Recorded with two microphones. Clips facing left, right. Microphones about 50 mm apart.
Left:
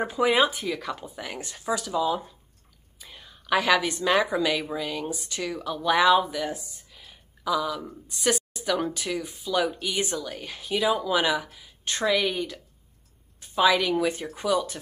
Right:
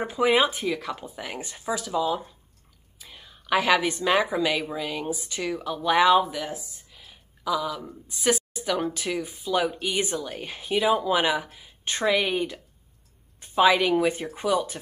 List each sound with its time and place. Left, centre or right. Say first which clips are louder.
0.1 s a woman's voice: right 2 dB; centre
9.4 s speech: even; centre
13.6 s a woman's voice: right 2 dB; right